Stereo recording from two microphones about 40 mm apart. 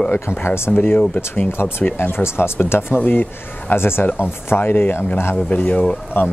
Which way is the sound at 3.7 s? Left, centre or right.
Left.